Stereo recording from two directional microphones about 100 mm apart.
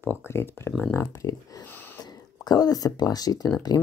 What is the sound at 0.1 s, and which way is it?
Speech, 25° left (ahead or behind).